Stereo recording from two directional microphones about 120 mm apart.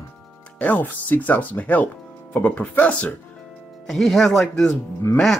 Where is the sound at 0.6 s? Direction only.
15° left (ahead or behind).